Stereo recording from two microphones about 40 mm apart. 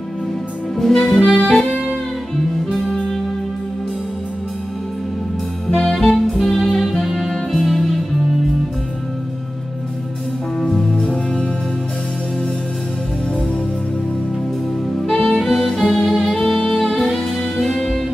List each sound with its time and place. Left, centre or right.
0.7 s music: centre
1.5 s music: centre
2.7 s music: centre
5.8 s saxophone: centre
6.1 s music: centre
10.8 s music: centre
15.0 s music: centre
16.3 s music: centre